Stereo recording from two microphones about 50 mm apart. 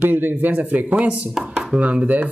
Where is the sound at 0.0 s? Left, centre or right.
Right.